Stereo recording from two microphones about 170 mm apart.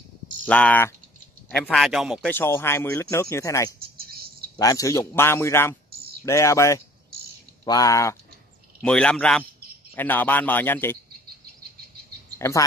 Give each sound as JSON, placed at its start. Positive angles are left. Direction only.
{"t": 0.5, "sound": "speech", "side_deg": 10}
{"t": 2.2, "sound": "speech", "side_deg": 15}
{"t": 4.0, "sound": "a sound", "side_deg": -60}
{"t": 4.6, "sound": "speech", "side_deg": 20}
{"t": 8.8, "sound": "speech", "side_deg": 5}
{"t": 12.4, "sound": "speech", "side_deg": 15}